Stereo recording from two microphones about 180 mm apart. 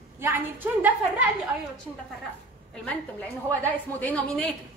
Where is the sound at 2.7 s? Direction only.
5° left (ahead or behind).